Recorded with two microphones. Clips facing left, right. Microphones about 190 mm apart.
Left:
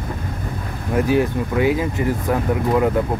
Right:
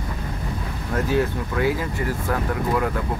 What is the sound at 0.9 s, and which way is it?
Speech, 15° left (ahead or behind).